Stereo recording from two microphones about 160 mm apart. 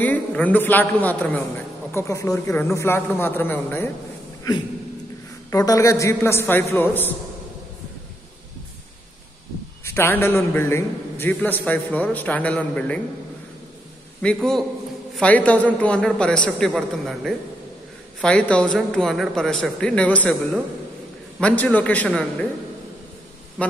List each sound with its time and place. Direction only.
0.0 s a man's voice: 10° left (ahead or behind)
5.5 s a man's voice: 20° left (ahead or behind)
9.8 s a man's voice: 15° left (ahead or behind)
14.2 s a man's voice: 5° left (ahead or behind)
21.4 s a man's voice: 5° left (ahead or behind)
23.6 s a sound: 10° left (ahead or behind)